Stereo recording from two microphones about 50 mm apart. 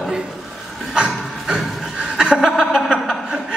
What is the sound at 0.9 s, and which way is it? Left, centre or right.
Chuckle, centre.